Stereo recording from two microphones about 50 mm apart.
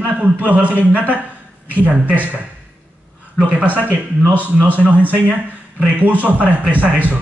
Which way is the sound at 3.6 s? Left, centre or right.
Right.